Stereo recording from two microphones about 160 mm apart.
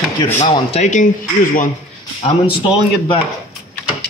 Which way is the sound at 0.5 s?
45° left (ahead or behind).